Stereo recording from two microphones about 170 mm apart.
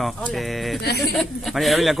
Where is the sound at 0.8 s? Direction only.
70° left (ahead or behind).